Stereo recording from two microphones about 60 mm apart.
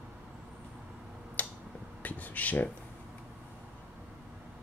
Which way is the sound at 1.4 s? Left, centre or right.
Left.